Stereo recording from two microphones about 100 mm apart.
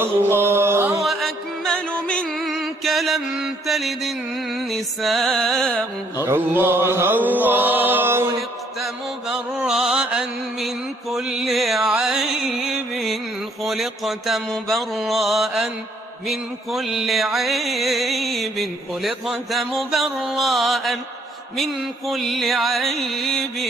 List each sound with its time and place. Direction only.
0.0 s music: 25° right (ahead or behind)
1.0 s music: 5° left (ahead or behind)
2.3 s music: centre (ahead or behind)
5.8 s mantra: 25° right (ahead or behind)
8.4 s mantra: centre (ahead or behind)
16.3 s music: centre (ahead or behind)